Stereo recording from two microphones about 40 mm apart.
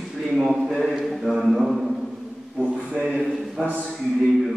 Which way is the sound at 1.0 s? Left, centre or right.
Centre.